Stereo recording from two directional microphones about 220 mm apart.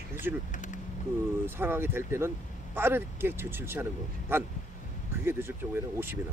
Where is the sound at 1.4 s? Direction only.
10° right (ahead or behind).